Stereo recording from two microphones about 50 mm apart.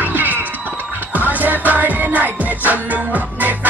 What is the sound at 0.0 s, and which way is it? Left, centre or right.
Music, right.